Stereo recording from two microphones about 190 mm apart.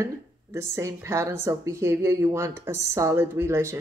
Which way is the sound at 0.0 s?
15° right (ahead or behind).